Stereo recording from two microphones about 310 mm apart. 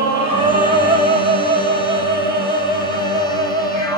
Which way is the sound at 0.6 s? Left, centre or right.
Centre.